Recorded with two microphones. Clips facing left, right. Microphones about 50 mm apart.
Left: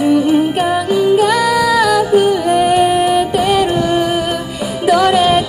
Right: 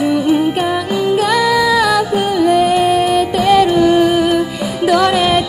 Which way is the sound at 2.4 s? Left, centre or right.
Centre.